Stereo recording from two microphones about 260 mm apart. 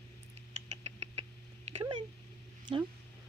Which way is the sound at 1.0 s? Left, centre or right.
Right.